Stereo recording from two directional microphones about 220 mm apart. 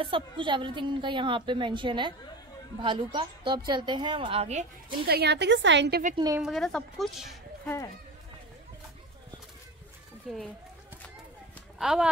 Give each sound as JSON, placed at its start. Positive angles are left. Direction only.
{"t": 0.0, "sound": "a woman's voice", "side_deg": -20}
{"t": 5.0, "sound": "a woman's voice", "side_deg": -45}
{"t": 6.1, "sound": "a woman's voice", "side_deg": -15}
{"t": 6.4, "sound": "a woman's voice", "side_deg": 0}
{"t": 10.3, "sound": "a woman's voice", "side_deg": 0}
{"t": 11.8, "sound": "a woman's voice", "side_deg": 0}